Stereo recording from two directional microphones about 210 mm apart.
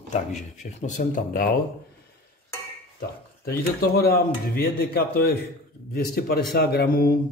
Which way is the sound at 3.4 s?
45° left (ahead or behind).